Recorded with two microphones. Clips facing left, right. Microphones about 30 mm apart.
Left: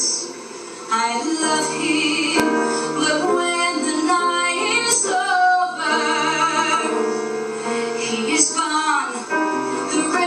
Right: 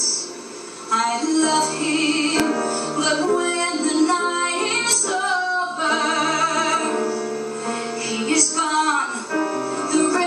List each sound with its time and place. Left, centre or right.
0.9 s music: centre
3.3 s music: left
3.7 s music: centre
4.1 s music: centre